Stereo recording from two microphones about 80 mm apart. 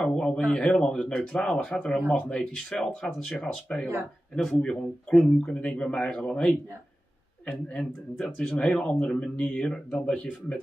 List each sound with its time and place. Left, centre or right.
0.0 s speech: centre
7.8 s speech: centre
8.5 s speech: centre